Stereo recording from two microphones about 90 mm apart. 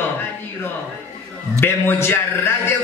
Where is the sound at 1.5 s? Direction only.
25° left (ahead or behind).